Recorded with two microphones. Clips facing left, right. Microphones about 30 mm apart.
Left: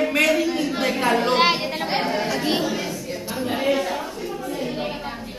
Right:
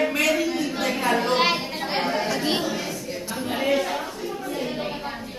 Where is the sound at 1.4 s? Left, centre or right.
Left.